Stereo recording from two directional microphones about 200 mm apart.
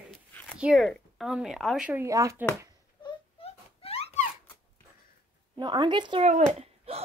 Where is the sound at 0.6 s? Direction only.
Centre (ahead or behind).